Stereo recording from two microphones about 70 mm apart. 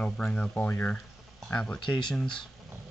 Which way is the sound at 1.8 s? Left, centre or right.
Left.